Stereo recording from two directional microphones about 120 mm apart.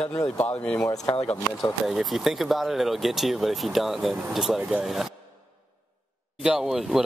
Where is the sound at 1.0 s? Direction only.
55° left (ahead or behind).